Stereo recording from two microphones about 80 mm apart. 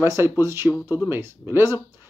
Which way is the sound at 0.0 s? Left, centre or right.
Right.